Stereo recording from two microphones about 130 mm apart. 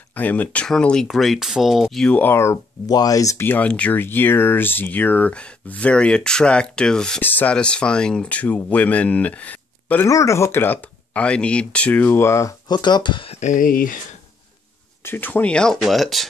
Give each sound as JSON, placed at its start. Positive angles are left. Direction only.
{"t": 0.1, "sound": "speech", "side_deg": 10}
{"t": 10.0, "sound": "speech", "side_deg": 25}
{"t": 13.4, "sound": "speech", "side_deg": 80}
{"t": 15.0, "sound": "speech", "side_deg": 15}